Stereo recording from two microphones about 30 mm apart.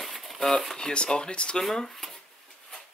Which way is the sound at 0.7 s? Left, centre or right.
Left.